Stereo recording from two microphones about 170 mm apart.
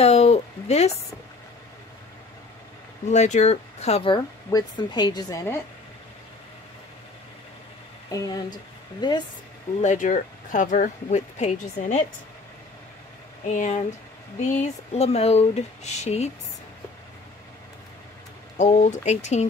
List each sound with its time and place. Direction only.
0.0 s speech: 40° left (ahead or behind)
3.1 s speech: 40° left (ahead or behind)
4.5 s speech: 25° left (ahead or behind)
8.1 s speech: 20° left (ahead or behind)
9.8 s speech: 45° left (ahead or behind)
13.5 s speech: 50° left (ahead or behind)
14.6 s speech: 40° left (ahead or behind)
18.6 s speech: 45° left (ahead or behind)